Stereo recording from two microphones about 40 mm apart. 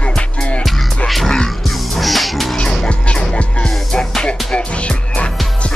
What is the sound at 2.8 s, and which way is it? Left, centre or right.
Music, left.